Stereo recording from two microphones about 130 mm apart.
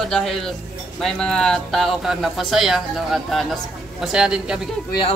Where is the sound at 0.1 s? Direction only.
Centre (ahead or behind).